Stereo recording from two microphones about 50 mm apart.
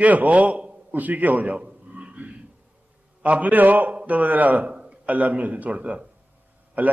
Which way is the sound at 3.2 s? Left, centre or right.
Right.